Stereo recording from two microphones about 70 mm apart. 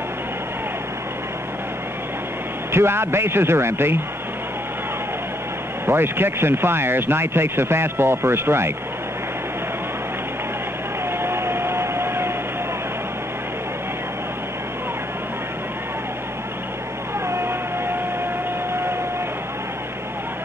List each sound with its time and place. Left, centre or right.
2.7 s speech: right
5.9 s speech: right
11.1 s vehicle: right
17.3 s a sound: right
18.7 s vehicle: right